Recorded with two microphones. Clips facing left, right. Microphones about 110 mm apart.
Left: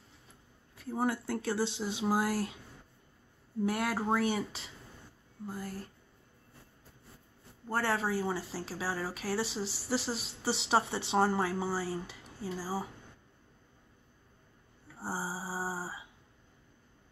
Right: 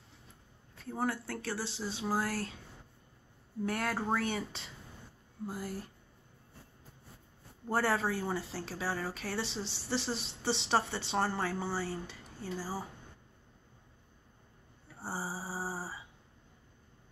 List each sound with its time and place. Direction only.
0.7 s speech: 10° left (ahead or behind)
3.6 s speech: 10° left (ahead or behind)
7.7 s speech: centre (ahead or behind)
15.0 s mantra: 10° left (ahead or behind)